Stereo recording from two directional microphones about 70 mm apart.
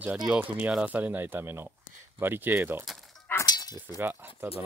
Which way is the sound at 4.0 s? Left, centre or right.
Right.